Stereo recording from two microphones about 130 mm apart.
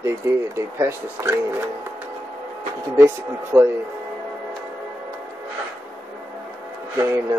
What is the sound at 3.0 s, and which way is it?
Speech, 20° right (ahead or behind).